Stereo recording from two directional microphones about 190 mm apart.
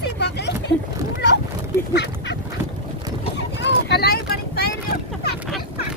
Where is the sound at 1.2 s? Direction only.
65° left (ahead or behind).